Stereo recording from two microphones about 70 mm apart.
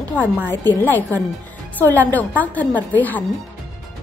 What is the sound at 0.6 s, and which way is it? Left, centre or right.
A woman's voice, left.